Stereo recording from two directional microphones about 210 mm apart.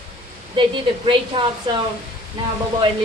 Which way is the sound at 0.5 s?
25° right (ahead or behind).